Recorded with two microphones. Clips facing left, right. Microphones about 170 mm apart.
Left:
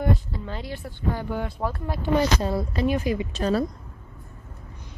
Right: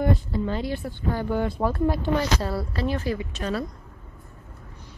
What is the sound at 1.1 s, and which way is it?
Speech, 5° left (ahead or behind).